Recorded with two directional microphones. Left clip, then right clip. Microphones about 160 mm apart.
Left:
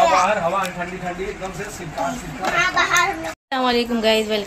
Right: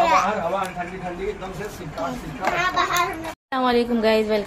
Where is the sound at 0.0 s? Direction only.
15° left (ahead or behind).